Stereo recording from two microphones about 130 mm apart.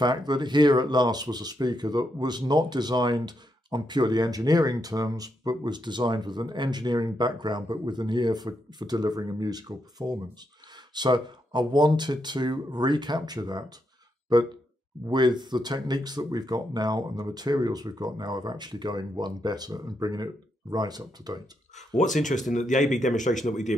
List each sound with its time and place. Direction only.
0.0 s speech: 35° right (ahead or behind)
21.7 s speech: 70° left (ahead or behind)